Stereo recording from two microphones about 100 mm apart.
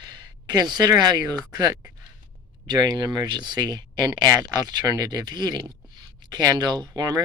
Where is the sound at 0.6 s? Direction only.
45° right (ahead or behind).